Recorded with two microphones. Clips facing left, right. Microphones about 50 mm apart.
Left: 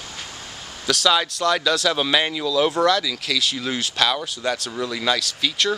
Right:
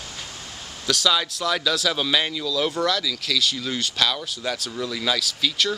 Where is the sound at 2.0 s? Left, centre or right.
Centre.